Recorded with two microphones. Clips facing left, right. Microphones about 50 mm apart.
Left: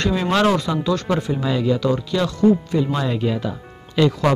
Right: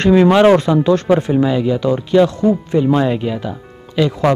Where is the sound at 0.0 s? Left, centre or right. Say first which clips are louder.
Right 8 dB; right.